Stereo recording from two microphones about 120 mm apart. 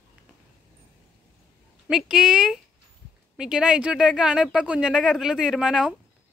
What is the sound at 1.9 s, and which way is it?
A woman's voice, 5° right (ahead or behind).